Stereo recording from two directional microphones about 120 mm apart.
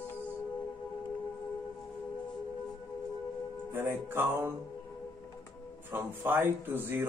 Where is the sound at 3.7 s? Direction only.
20° right (ahead or behind).